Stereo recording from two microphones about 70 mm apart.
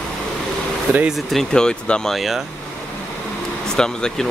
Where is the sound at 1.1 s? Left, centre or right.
Centre.